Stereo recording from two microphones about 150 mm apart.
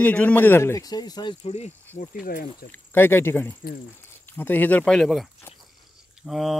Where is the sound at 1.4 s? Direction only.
45° left (ahead or behind).